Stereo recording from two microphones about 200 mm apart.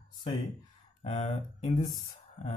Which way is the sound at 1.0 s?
30° left (ahead or behind).